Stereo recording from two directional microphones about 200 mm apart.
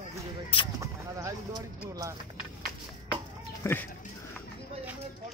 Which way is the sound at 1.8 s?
15° right (ahead or behind).